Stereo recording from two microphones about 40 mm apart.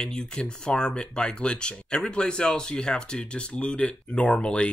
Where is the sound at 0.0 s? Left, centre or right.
Left.